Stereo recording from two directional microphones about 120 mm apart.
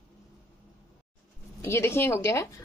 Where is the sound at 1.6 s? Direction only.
20° left (ahead or behind).